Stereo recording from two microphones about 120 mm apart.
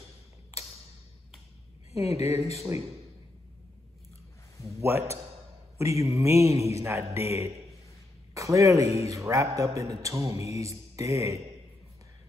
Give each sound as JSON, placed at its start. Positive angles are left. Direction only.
{"t": 1.9, "sound": "speech", "side_deg": 60}
{"t": 2.5, "sound": "a man's voice", "side_deg": -25}
{"t": 4.6, "sound": "a man's voice", "side_deg": -20}